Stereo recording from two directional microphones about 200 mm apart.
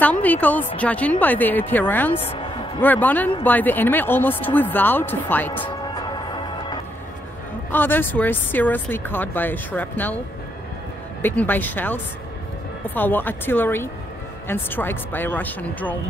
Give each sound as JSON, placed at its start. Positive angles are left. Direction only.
{"t": 0.0, "sound": "speech", "side_deg": 10}
{"t": 2.1, "sound": "music", "side_deg": 30}
{"t": 2.8, "sound": "speech", "side_deg": 10}
{"t": 5.7, "sound": "music", "side_deg": 20}
{"t": 7.7, "sound": "speech", "side_deg": 10}
{"t": 11.2, "sound": "speech", "side_deg": 10}